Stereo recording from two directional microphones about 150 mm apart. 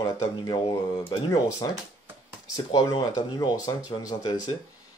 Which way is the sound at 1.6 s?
25° left (ahead or behind).